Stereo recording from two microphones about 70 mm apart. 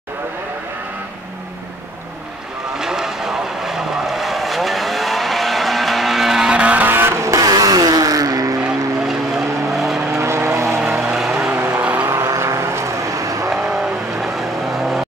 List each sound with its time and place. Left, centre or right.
2.8 s vehicle: centre
6.9 s vehicle: right
7.2 s vehicle: right
8.6 s vehicle: centre
10.1 s vehicle: right
10.8 s vehicle: centre
11.5 s vehicle: right
12.4 s vehicle: right
13.5 s vehicle: centre